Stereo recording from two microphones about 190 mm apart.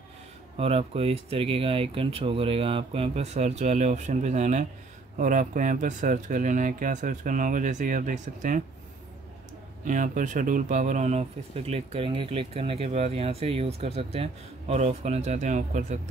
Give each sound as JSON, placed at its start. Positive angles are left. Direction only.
{"t": 0.6, "sound": "speech", "side_deg": -30}
{"t": 9.8, "sound": "speech", "side_deg": -45}